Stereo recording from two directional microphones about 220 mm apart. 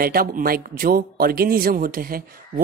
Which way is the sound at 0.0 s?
40° right (ahead or behind).